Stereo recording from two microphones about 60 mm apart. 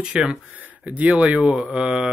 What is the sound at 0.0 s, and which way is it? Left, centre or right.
Speech, centre.